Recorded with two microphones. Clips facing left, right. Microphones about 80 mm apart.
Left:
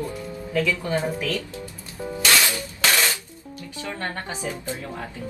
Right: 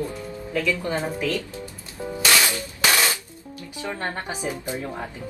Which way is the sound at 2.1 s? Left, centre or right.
Centre.